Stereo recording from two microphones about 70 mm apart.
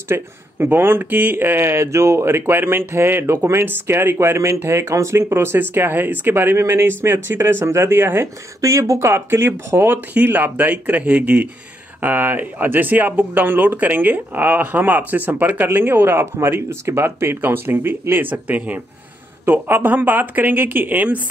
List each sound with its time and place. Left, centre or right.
0.1 s speech: right